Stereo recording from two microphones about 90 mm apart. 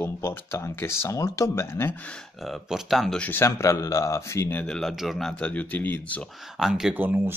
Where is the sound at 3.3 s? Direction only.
30° left (ahead or behind).